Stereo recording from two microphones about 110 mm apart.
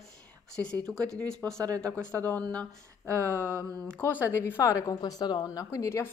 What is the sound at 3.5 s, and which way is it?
Speech, 25° right (ahead or behind).